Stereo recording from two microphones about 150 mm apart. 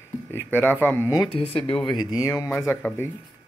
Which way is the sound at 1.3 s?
40° left (ahead or behind).